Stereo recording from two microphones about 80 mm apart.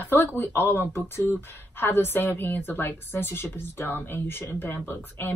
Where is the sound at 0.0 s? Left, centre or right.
Left.